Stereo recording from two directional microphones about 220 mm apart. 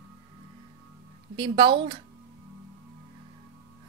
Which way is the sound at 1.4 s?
20° right (ahead or behind).